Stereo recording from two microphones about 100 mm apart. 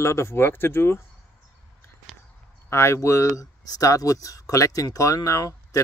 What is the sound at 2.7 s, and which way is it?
Speech, 25° left (ahead or behind).